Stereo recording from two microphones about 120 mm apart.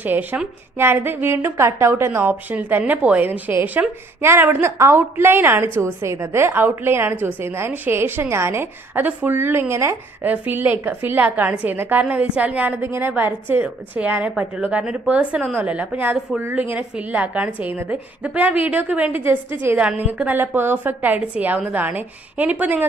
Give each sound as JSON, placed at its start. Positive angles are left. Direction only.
{"t": 0.0, "sound": "a woman's voice", "side_deg": -15}